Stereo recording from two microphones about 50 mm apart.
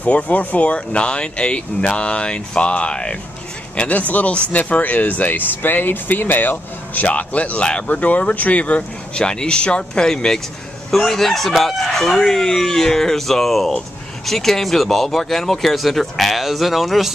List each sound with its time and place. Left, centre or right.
0.0 s speech: left; by 17.1 s centre